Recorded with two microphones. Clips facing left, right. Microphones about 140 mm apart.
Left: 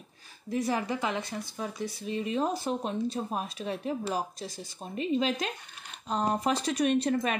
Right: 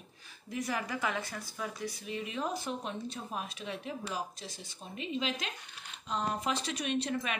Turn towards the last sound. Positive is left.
turn(degrees=40)  # may be behind; listen again after turning